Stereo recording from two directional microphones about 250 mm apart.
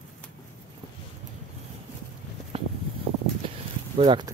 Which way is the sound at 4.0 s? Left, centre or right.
Centre.